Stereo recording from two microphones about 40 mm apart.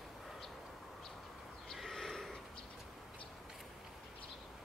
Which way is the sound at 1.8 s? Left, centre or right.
Centre.